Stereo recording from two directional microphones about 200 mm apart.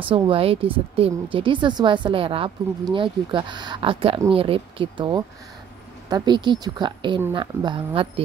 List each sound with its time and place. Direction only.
0.0 s a woman's voice: 25° right (ahead or behind)